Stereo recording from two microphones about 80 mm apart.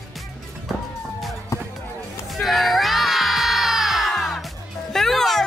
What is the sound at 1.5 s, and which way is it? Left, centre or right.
Music, left.